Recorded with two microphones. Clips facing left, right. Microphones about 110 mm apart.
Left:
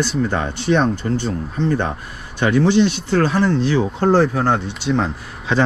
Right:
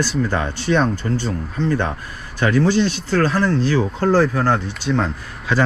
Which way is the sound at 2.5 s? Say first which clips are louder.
Left 3 dB; 40° right (ahead or behind).